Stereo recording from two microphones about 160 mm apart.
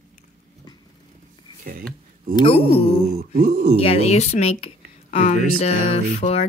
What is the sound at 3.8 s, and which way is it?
A woman's voice, 40° left (ahead or behind).